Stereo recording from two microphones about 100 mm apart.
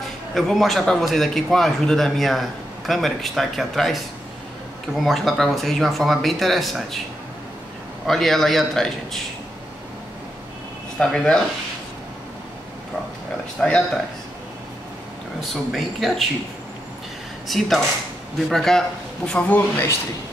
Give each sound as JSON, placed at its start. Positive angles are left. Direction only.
{"t": 0.3, "sound": "a man's voice", "side_deg": 5}
{"t": 5.0, "sound": "a man's voice", "side_deg": 0}
{"t": 8.1, "sound": "a man's voice", "side_deg": 5}
{"t": 11.0, "sound": "speech", "side_deg": 10}
{"t": 13.6, "sound": "speech", "side_deg": 10}
{"t": 15.5, "sound": "a man's voice", "side_deg": 0}
{"t": 17.5, "sound": "a man's voice", "side_deg": 0}